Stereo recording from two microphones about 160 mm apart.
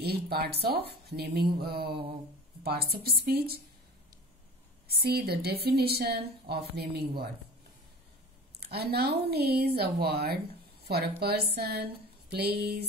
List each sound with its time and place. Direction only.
0.0 s a woman's voice: 80° right
4.8 s speech: 80° right
8.5 s speech: 80° right
11.5 s a sound: 80° right